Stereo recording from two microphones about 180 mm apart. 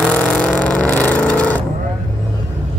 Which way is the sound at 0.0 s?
5° left (ahead or behind).